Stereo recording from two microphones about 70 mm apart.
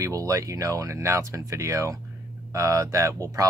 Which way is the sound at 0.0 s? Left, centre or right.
Right.